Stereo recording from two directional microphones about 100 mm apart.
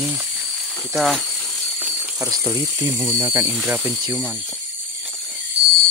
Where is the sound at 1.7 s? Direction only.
20° right (ahead or behind).